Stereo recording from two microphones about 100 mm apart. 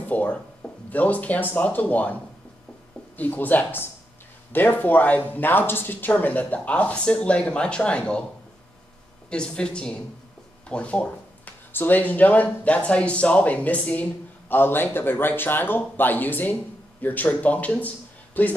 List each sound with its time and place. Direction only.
0.0 s speech: 15° left (ahead or behind)
3.2 s speech: 20° left (ahead or behind)
9.3 s speech: 10° left (ahead or behind)